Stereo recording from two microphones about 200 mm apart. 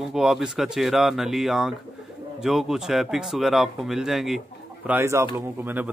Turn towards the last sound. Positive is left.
turn(degrees=-10)  # may be behind; listen again after turning